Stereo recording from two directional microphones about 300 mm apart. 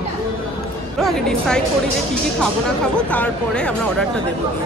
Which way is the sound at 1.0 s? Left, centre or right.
Centre.